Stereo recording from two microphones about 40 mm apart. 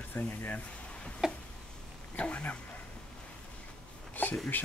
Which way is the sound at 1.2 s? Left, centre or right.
Centre.